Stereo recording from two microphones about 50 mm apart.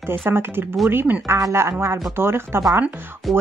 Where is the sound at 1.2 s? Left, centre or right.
Right.